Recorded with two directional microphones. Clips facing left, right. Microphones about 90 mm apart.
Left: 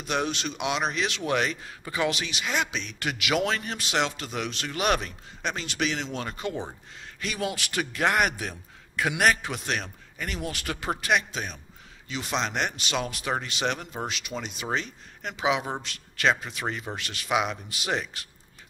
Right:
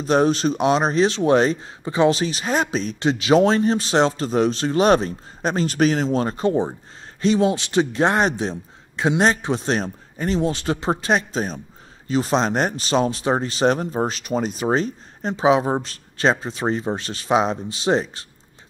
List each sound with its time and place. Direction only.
0.0 s a man's voice: 35° right (ahead or behind)